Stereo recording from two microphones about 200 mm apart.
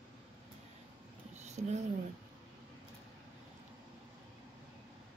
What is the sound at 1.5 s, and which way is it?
Speech, 35° right (ahead or behind).